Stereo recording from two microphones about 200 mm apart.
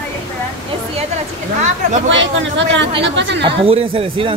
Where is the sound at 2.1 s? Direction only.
65° right (ahead or behind).